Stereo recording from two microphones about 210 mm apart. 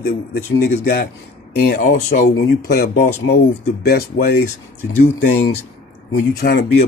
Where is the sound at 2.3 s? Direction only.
50° left (ahead or behind).